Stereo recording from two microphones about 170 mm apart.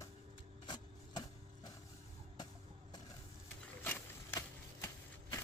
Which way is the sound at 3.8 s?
15° left (ahead or behind).